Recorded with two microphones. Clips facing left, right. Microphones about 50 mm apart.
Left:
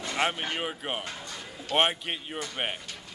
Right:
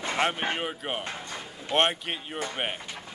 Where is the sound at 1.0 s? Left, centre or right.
Right.